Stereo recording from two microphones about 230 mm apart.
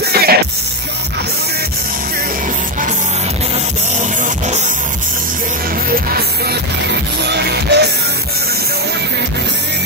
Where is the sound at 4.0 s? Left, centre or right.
Right.